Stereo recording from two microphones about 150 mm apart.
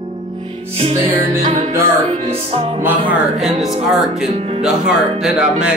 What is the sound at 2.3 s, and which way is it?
Music, 40° right (ahead or behind).